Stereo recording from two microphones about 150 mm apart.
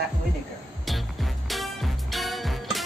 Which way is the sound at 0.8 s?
Centre (ahead or behind).